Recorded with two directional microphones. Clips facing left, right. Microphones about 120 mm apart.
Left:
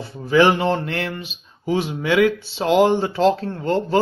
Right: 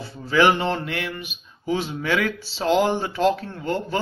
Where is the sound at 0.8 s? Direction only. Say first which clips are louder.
Left 3 dB; 35° left (ahead or behind).